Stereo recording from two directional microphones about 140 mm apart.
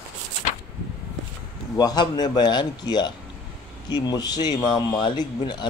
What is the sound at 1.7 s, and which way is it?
A man's voice, 25° left (ahead or behind).